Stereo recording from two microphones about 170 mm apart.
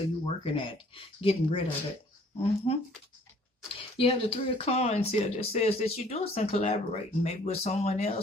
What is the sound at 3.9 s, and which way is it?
Speech, 35° left (ahead or behind).